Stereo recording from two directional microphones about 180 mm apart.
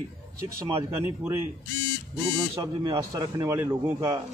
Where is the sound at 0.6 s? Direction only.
15° right (ahead or behind).